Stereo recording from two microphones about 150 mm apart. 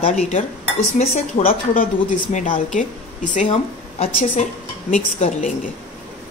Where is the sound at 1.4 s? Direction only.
70° left (ahead or behind).